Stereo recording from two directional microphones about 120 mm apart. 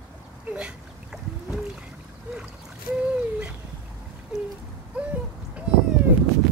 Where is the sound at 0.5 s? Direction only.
10° right (ahead or behind).